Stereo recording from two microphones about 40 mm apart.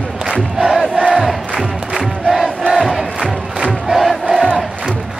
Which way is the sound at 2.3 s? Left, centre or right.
Centre.